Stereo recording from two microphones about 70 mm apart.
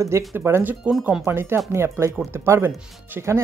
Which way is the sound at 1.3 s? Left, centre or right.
Right.